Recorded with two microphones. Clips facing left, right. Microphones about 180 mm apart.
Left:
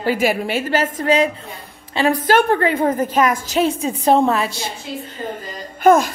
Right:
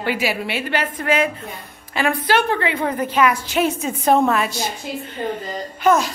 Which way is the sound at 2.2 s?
45° left (ahead or behind).